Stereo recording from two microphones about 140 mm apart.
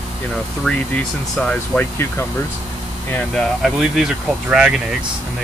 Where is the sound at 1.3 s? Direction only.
5° left (ahead or behind).